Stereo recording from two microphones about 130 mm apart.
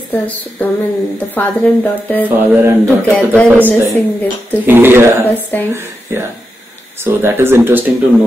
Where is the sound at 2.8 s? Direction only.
10° left (ahead or behind).